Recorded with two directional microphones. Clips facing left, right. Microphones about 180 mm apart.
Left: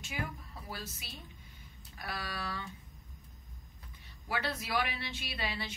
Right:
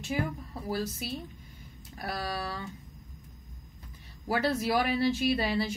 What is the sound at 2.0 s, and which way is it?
Speech, 40° right (ahead or behind).